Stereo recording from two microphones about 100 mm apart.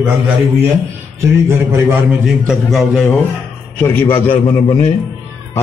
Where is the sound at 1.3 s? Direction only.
25° right (ahead or behind).